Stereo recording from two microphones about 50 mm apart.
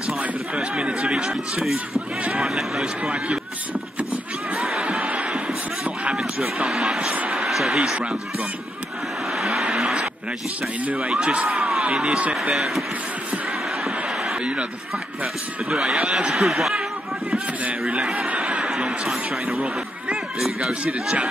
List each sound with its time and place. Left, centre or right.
0.6 s speech: centre
4.6 s crowd: centre
6.7 s a man's voice: centre
7.2 s a sound: centre
9.4 s vehicle: centre
11.0 s speech: centre
12.5 s a man's voice: centre
15.7 s speech: centre
18.3 s a sound: right
19.0 s a man's voice: centre
20.8 s speech: centre